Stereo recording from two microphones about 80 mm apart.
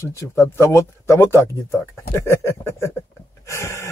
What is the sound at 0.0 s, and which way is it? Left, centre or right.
Speech, left.